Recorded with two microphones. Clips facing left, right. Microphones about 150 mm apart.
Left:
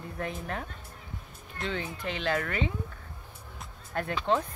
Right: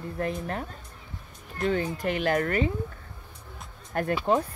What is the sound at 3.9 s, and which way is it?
Speech, 45° right (ahead or behind).